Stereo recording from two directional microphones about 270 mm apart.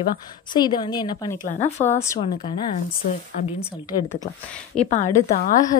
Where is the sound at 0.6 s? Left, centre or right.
Centre.